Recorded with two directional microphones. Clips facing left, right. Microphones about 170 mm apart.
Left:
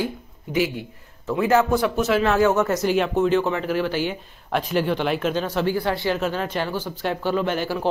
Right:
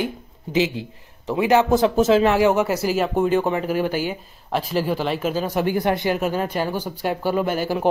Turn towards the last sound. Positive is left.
turn(degrees=-10)  # may be behind; listen again after turning